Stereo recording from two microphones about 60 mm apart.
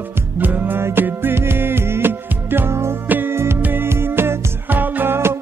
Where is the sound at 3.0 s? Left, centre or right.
Right.